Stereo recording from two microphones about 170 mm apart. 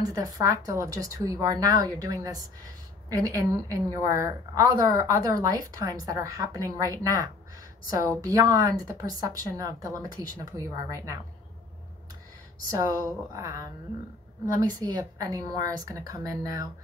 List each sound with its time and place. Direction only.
0.0 s a woman's voice: 20° right (ahead or behind)
12.7 s a woman's voice: 20° right (ahead or behind)